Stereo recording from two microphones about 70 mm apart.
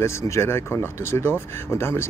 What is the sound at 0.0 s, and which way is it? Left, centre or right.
Speech, left.